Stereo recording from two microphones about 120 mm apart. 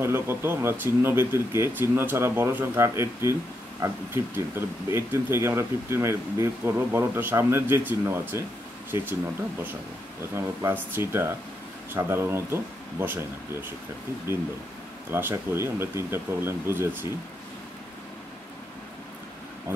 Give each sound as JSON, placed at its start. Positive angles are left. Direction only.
{"t": 0.0, "sound": "speech", "side_deg": -20}
{"t": 10.3, "sound": "speech", "side_deg": -20}
{"t": 15.1, "sound": "speech", "side_deg": -20}